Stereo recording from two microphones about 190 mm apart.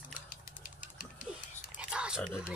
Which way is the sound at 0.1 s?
45° left (ahead or behind).